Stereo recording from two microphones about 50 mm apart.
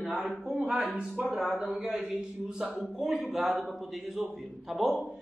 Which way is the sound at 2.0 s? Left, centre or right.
Centre.